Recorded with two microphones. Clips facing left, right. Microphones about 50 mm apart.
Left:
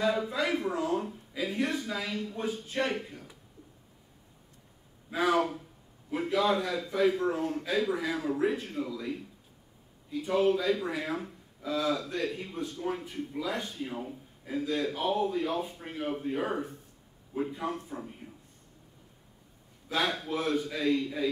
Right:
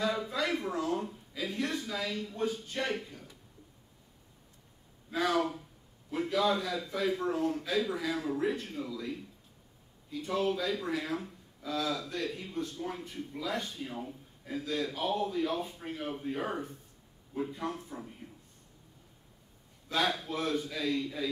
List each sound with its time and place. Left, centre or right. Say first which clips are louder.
0.0 s a man's voice: left 3 dB; centre
5.3 s a man's voice: left 3 dB; centre
10.2 s a man's voice: left 5 dB; centre
19.9 s a man's voice: left 1 dB; centre